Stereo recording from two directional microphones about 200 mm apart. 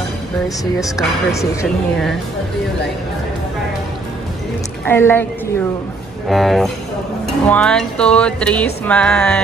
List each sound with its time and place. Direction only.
0.7 s speech: 15° left (ahead or behind)
4.8 s speech: 10° left (ahead or behind)
6.2 s music: centre (ahead or behind)